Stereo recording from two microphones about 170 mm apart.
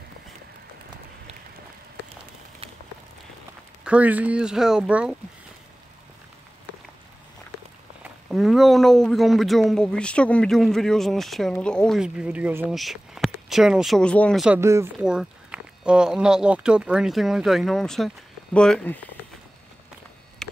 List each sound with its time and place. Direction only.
2.6 s a sound: 35° right (ahead or behind)
3.8 s speech: 10° right (ahead or behind)
8.3 s speech: centre (ahead or behind)
14.4 s speech: 10° right (ahead or behind)
15.0 s speech: 5° right (ahead or behind)